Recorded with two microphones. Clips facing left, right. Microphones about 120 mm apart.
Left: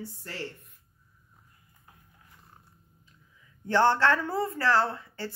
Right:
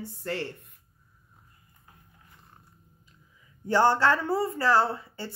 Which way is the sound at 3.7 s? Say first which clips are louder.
Right 1 dB; 10° right (ahead or behind).